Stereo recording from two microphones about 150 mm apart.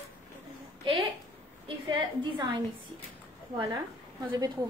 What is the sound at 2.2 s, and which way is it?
Speech, 30° right (ahead or behind).